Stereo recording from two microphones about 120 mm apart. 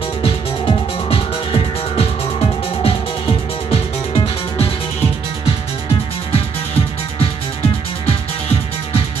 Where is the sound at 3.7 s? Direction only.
55° left (ahead or behind).